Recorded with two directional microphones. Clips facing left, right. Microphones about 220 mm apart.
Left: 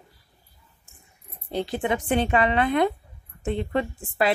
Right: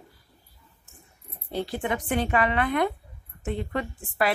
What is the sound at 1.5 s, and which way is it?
Speech, 20° left (ahead or behind).